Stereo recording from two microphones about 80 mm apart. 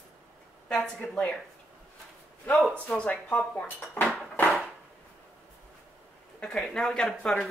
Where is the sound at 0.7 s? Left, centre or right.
Centre.